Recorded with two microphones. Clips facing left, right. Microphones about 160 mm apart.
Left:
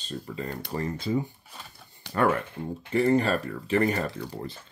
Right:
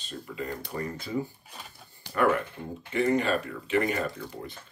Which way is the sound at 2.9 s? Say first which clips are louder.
Left 2 dB; 35° left (ahead or behind).